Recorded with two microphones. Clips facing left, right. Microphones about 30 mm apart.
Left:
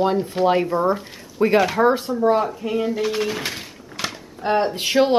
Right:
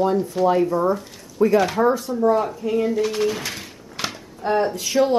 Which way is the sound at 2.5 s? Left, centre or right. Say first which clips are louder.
Right 2 dB; left.